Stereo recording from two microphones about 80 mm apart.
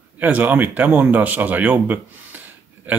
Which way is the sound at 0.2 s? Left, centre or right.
Right.